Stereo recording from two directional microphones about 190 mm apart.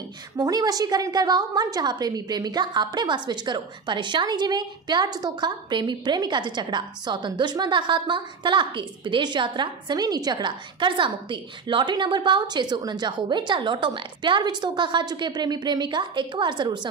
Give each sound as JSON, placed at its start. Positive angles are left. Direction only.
{"t": 0.4, "sound": "a woman's voice", "side_deg": -20}